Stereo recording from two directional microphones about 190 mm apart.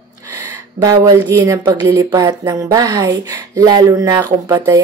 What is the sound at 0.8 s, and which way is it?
A woman's voice, 20° right (ahead or behind).